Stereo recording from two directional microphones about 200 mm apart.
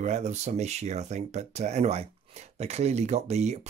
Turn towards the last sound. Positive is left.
turn(degrees=-35)  # may be behind; listen again after turning